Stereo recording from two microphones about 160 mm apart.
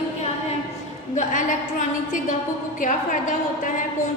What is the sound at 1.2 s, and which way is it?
A woman's voice, 55° left (ahead or behind).